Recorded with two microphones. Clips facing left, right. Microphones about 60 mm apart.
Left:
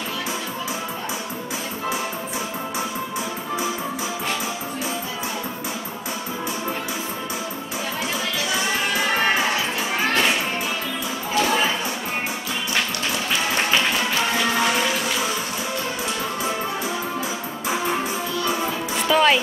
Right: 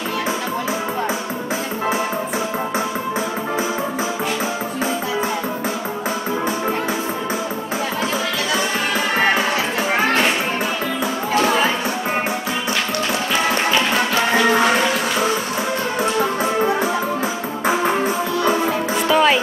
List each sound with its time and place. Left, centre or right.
17.6 s music: right
19.0 s music: centre